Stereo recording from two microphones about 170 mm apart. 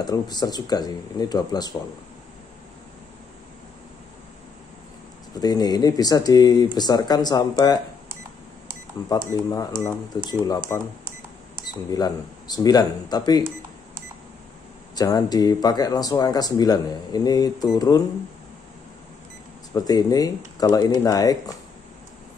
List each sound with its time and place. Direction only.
0.0 s speech: 25° left (ahead or behind)
5.3 s speech: 20° left (ahead or behind)
9.1 s speech: 20° left (ahead or behind)
11.9 s speech: 20° left (ahead or behind)
15.0 s speech: 20° left (ahead or behind)
19.7 s speech: 20° left (ahead or behind)